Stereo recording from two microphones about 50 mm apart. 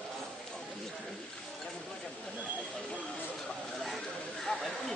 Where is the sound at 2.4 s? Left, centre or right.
Right.